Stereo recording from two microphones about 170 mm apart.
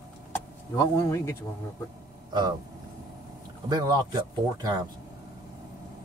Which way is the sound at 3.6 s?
20° right (ahead or behind).